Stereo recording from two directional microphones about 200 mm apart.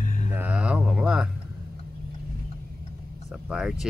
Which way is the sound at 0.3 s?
5° right (ahead or behind).